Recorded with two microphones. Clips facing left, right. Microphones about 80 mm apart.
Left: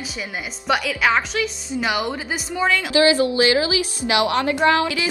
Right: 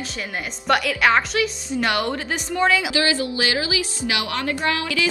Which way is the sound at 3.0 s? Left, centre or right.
Left.